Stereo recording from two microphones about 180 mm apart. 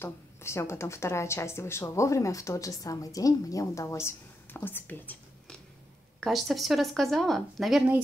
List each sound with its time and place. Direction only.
0.0 s speech: 15° left (ahead or behind); by 8.0 s 5° right (ahead or behind)